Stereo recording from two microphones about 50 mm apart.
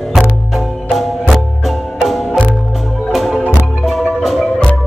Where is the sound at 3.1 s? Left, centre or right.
Centre.